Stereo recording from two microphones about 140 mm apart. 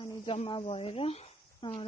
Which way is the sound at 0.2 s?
40° left (ahead or behind).